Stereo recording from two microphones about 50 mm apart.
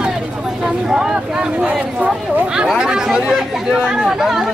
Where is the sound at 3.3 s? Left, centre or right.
Centre.